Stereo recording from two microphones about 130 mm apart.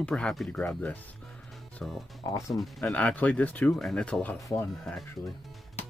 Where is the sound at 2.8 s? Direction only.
10° left (ahead or behind).